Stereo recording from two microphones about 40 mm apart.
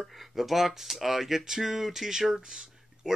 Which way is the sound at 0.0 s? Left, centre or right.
Centre.